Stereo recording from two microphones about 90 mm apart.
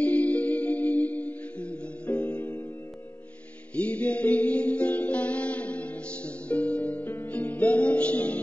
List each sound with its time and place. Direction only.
0.0 s music: 15° left (ahead or behind)
3.7 s music: 15° left (ahead or behind)